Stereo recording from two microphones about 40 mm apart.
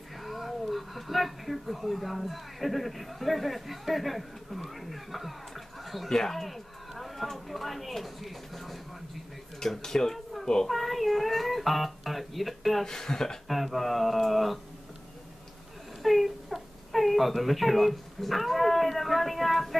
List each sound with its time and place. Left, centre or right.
0.2 s a child's voice: centre
10.7 s speech: centre
12.8 s speech: centre
13.5 s speech: centre
16.0 s speech: centre